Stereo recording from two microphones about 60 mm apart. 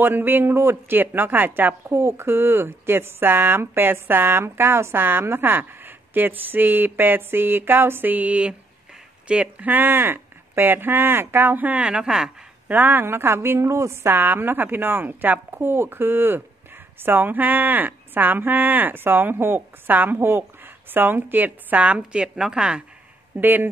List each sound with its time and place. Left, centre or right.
0.0 s speech: right
1.9 s speech: right; by 12.3 s centre
12.6 s speech: right
14.0 s speech: right; by 22.8 s centre
23.3 s speech: right